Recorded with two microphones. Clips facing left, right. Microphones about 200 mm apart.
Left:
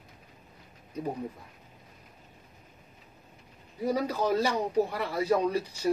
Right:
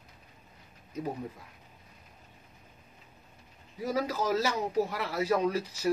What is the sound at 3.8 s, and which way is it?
Speech, 5° right (ahead or behind).